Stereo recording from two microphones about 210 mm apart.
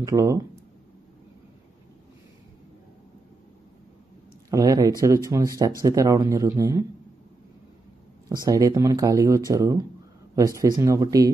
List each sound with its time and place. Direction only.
0.0 s speech: 15° right (ahead or behind)
4.5 s speech: 15° right (ahead or behind)
8.5 s speech: 15° right (ahead or behind)